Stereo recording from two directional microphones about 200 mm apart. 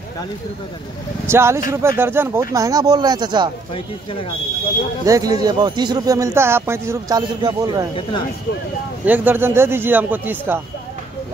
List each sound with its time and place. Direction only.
1.2 s speech: 15° right (ahead or behind)
3.7 s speech: 25° left (ahead or behind)
5.0 s speech: 15° right (ahead or behind)
9.0 s speech: 10° right (ahead or behind)